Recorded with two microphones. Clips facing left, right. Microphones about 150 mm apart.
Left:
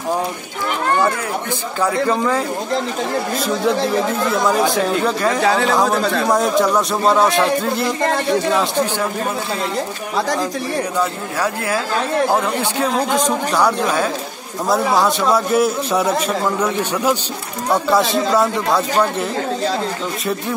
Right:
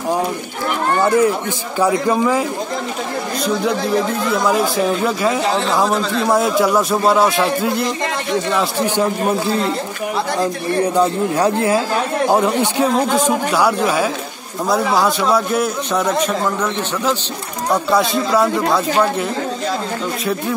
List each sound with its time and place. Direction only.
1.8 s speech: 10° right (ahead or behind)
4.3 s a man's voice: centre (ahead or behind)
11.0 s speech: 30° right (ahead or behind)
12.3 s a man's voice: 15° right (ahead or behind); by 17.2 s 10° left (ahead or behind)
17.8 s a man's voice: centre (ahead or behind)